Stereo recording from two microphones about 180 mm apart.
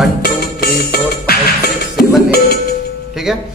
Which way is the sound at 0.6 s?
60° left (ahead or behind).